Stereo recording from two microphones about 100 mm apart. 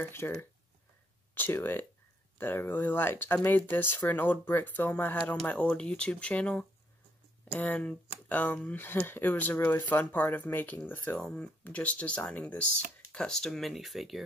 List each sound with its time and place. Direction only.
0.0 s speech: 25° left (ahead or behind); by 14.2 s centre (ahead or behind)